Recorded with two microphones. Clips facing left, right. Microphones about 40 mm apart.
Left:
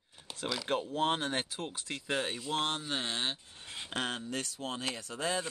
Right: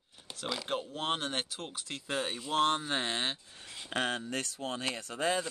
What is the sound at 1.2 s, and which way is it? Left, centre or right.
Speech, left.